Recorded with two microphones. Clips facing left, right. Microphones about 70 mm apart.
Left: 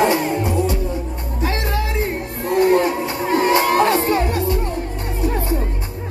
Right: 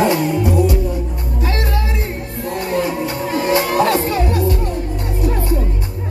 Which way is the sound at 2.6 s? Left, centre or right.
Left.